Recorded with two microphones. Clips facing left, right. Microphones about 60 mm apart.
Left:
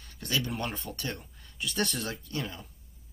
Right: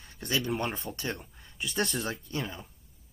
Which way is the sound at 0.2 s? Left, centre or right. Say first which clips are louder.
Right 2 dB; centre.